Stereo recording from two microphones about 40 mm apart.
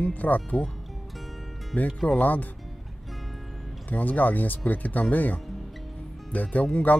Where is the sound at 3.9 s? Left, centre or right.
Left.